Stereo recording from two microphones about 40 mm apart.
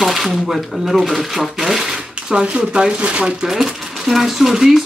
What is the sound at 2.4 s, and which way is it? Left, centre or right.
Speech, right.